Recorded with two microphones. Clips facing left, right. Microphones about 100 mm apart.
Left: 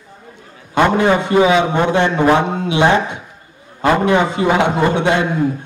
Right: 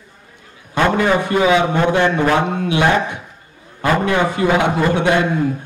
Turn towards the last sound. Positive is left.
turn(degrees=20)  # may be behind; listen again after turning